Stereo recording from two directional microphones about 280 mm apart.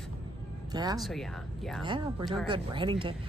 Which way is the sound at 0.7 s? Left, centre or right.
Centre.